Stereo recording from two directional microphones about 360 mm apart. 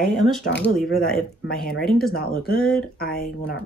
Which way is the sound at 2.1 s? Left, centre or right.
Left.